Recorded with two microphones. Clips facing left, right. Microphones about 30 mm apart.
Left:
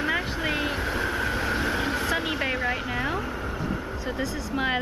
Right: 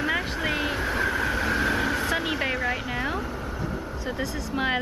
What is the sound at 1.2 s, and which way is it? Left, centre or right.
Vehicle, centre.